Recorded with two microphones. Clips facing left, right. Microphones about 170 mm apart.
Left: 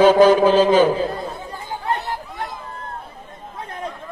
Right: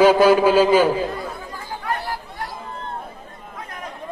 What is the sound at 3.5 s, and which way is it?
Chatter, 30° left (ahead or behind).